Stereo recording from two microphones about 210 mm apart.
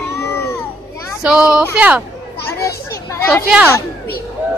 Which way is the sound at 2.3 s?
50° left (ahead or behind).